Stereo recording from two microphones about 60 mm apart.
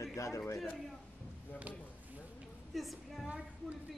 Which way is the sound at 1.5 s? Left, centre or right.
Right.